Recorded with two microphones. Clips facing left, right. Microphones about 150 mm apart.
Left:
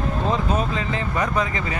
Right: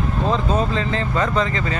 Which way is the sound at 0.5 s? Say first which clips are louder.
Right 3 dB; 10° left (ahead or behind).